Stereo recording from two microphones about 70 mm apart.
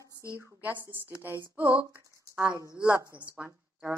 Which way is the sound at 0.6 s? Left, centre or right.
Right.